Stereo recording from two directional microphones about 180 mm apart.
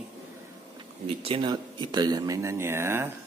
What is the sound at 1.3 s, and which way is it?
Speech, 25° right (ahead or behind).